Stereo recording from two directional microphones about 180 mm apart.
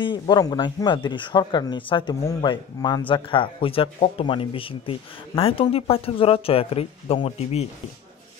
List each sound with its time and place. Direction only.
0.0 s speech: 25° left (ahead or behind)